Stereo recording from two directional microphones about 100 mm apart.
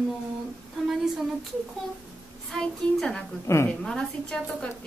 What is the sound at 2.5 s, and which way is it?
A woman's voice, 5° left (ahead or behind).